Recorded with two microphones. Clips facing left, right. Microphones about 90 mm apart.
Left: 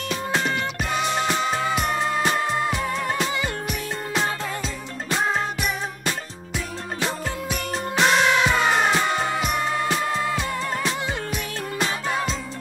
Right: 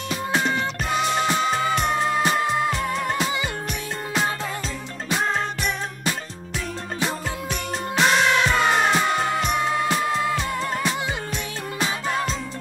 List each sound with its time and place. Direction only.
0.1 s music: 5° right (ahead or behind)
5.2 s music: 5° left (ahead or behind)
7.4 s music: centre (ahead or behind)
12.1 s music: centre (ahead or behind)